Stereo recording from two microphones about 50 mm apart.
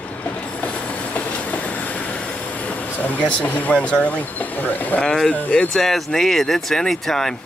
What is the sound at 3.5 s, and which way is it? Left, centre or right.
Speech, left.